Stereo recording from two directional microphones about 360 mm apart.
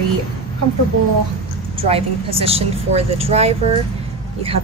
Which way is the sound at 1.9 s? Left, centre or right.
Centre.